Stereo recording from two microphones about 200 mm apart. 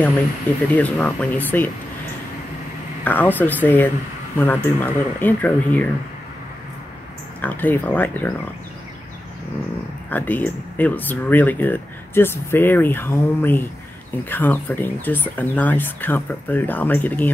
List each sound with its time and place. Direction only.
0.7 s speech: 5° left (ahead or behind)
3.0 s speech: 10° left (ahead or behind)
7.4 s speech: 10° left (ahead or behind)
10.0 s speech: 10° left (ahead or behind)